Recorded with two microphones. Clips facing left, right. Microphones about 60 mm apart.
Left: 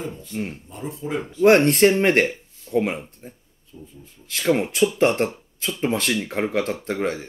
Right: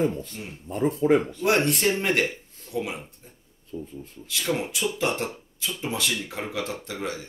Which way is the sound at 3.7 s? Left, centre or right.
Right.